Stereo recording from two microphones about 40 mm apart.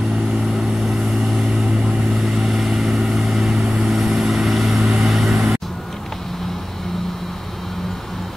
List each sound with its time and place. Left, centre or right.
2.1 s vehicle: centre
4.8 s vehicle: centre